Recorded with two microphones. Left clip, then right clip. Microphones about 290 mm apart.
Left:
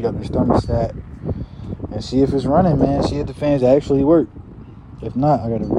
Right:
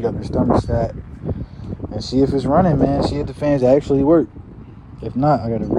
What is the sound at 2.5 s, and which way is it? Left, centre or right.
Speech, centre.